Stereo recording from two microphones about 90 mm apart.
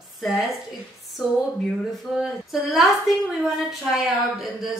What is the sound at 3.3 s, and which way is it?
A woman's voice, centre (ahead or behind).